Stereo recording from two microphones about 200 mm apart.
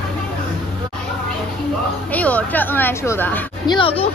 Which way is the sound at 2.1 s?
5° left (ahead or behind).